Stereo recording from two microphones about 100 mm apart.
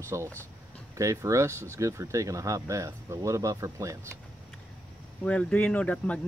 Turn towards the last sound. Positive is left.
turn(degrees=15)  # may be behind; listen again after turning